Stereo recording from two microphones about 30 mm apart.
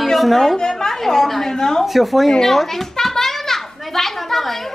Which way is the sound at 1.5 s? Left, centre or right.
Centre.